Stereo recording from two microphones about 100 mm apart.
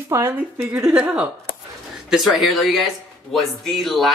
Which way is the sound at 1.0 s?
10° right (ahead or behind).